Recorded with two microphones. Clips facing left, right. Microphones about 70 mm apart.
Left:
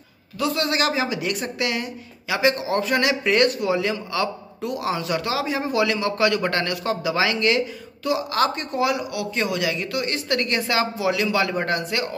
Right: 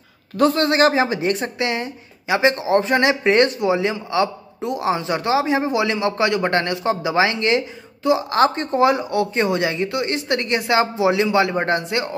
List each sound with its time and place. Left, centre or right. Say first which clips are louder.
0.4 s a woman's voice: right 7 dB; right